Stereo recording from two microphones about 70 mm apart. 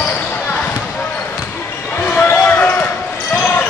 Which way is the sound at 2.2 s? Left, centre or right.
Left.